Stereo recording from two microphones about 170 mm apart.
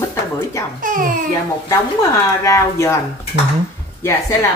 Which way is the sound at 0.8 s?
55° right (ahead or behind).